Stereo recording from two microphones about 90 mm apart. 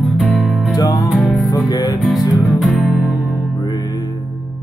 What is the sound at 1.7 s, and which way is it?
Music, 50° left (ahead or behind).